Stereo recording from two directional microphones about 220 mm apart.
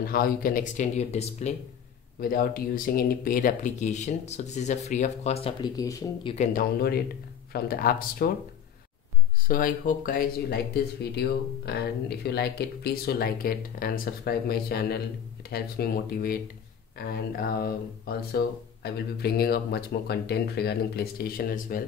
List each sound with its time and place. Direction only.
0.0 s speech: 40° left (ahead or behind)
2.1 s speech: 40° left (ahead or behind); by 6.3 s 15° left (ahead or behind)
6.3 s speech: 35° left (ahead or behind)
9.5 s speech: 40° left (ahead or behind)